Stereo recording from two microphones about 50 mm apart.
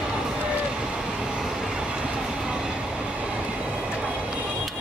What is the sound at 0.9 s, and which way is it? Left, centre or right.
Train, centre.